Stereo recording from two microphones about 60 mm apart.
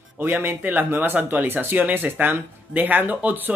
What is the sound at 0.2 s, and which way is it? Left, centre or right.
Speech, right.